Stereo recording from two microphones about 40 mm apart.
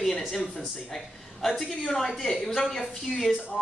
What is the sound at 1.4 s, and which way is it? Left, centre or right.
A woman's voice, centre.